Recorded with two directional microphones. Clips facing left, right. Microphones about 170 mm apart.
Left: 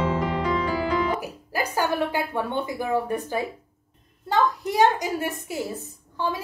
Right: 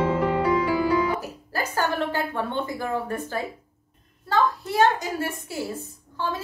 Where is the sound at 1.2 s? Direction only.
15° left (ahead or behind).